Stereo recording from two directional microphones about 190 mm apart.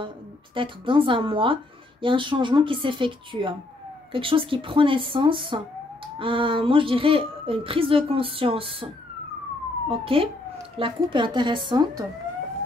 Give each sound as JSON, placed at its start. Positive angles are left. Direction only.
{"t": 0.6, "sound": "speech", "side_deg": -25}
{"t": 9.8, "sound": "speech", "side_deg": -30}